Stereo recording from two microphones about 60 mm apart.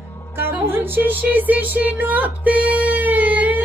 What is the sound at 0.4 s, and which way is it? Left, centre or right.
Music, right.